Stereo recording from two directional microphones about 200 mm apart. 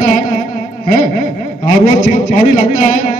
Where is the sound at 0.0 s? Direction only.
40° left (ahead or behind).